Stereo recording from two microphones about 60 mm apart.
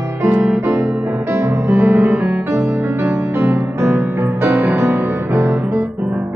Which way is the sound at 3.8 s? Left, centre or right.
Right.